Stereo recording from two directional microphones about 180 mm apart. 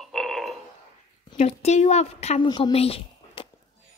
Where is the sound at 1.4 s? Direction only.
35° left (ahead or behind).